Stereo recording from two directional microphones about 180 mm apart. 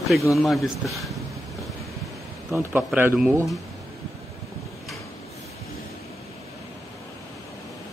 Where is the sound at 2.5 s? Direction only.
10° right (ahead or behind).